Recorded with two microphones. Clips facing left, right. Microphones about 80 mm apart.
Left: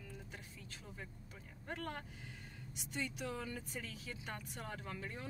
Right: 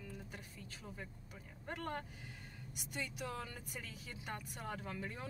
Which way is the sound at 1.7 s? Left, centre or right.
Centre.